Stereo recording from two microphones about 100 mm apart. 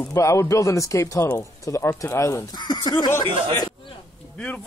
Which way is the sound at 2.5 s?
45° left (ahead or behind).